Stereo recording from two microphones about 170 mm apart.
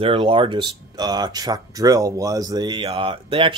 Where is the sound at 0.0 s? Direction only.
30° right (ahead or behind).